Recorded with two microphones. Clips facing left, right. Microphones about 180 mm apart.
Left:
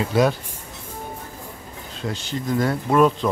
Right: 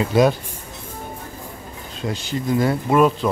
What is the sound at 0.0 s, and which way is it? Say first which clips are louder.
Speech: right 3 dB; 20° right (ahead or behind).